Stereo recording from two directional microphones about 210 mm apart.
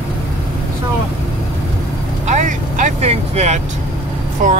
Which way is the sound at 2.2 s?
35° right (ahead or behind).